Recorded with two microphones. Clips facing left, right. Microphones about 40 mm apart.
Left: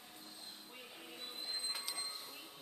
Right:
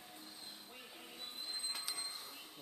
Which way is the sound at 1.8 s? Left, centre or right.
Centre.